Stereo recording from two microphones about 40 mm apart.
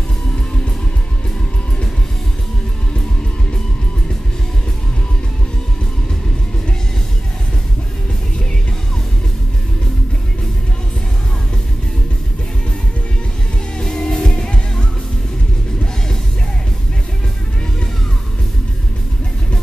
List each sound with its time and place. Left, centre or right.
13.8 s music: centre